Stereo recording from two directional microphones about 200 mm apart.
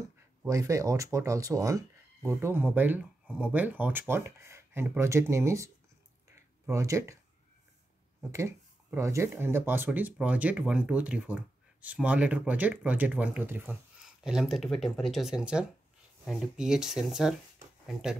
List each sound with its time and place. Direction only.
0.4 s speech: 15° right (ahead or behind)
6.2 s a sound: 15° right (ahead or behind)
8.3 s speech: 15° right (ahead or behind)